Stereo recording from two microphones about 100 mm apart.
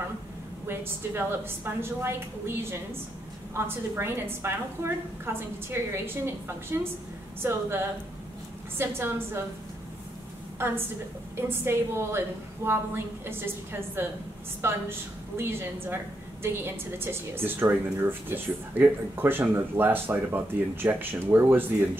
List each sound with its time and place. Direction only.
0.7 s a woman's voice: 25° right (ahead or behind)
8.7 s a woman's voice: 25° right (ahead or behind)
11.3 s a woman's voice: 25° right (ahead or behind)